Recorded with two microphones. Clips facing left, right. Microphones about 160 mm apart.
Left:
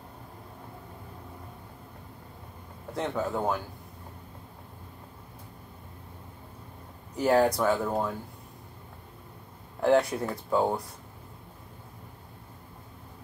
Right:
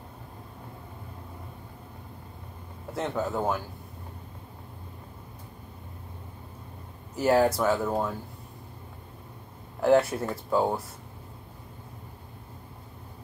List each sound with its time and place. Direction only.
2.9 s speech: centre (ahead or behind)
7.2 s speech: centre (ahead or behind)
9.8 s speech: 5° right (ahead or behind)